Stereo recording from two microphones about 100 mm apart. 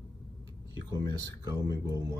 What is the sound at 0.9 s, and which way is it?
Speech, 40° right (ahead or behind).